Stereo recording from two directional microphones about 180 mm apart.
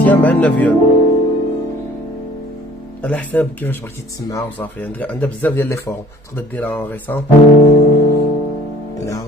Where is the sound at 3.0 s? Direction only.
10° left (ahead or behind).